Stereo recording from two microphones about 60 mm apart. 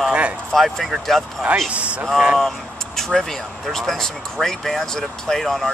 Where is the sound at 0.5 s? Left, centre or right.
Centre.